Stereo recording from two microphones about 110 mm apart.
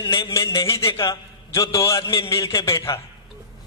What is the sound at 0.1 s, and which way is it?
A man's voice, 25° left (ahead or behind).